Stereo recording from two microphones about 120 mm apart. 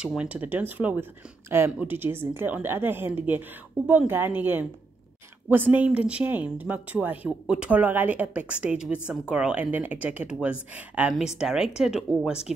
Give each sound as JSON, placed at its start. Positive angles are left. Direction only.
{"t": 0.0, "sound": "speech", "side_deg": -10}